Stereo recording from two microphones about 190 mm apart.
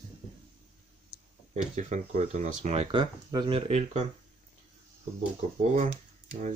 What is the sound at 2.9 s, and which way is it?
Speech, 25° right (ahead or behind).